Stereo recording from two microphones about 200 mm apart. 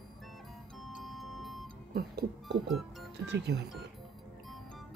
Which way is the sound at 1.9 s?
50° right (ahead or behind).